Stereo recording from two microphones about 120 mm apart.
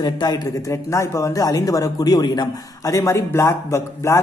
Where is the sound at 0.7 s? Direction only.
25° left (ahead or behind).